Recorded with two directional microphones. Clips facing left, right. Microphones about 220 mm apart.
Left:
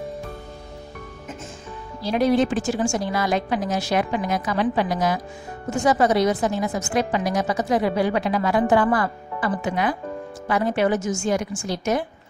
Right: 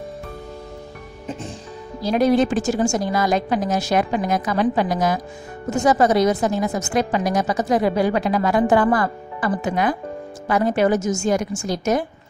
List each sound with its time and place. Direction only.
2.0 s a woman's voice: 45° right (ahead or behind)